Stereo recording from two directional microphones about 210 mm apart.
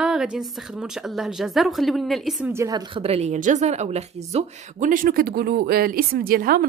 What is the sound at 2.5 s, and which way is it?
A woman's voice, 15° right (ahead or behind).